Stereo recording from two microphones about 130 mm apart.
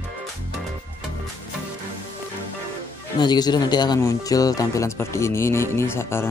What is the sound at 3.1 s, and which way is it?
Speech, 35° left (ahead or behind).